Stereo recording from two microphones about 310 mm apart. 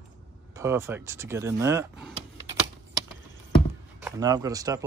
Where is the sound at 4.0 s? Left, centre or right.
Centre.